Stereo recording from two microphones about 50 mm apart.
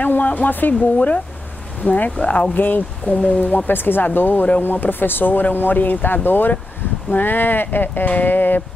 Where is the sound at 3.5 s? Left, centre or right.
Left.